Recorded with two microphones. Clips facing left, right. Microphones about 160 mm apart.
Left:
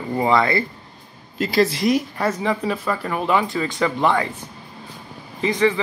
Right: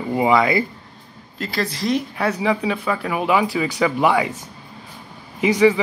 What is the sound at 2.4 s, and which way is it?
Speech, centre (ahead or behind).